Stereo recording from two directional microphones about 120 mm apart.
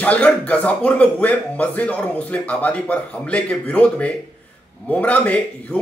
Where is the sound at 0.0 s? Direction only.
10° left (ahead or behind).